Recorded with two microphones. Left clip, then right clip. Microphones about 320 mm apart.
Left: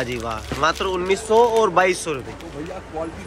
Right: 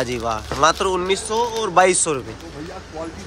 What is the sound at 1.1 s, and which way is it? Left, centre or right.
Speech, centre.